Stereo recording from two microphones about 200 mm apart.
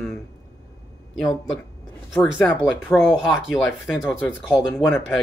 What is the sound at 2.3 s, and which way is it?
Speech, centre (ahead or behind).